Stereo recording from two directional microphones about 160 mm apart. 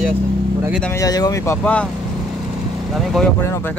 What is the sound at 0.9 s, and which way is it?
Speech, 25° left (ahead or behind).